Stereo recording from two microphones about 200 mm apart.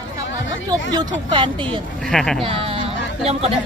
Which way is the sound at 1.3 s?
25° right (ahead or behind).